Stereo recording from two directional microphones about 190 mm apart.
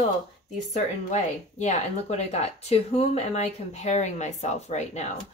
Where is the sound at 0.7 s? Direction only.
40° left (ahead or behind).